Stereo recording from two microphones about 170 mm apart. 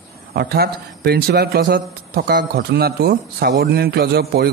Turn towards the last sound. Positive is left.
turn(degrees=-65)  # may be behind; listen again after turning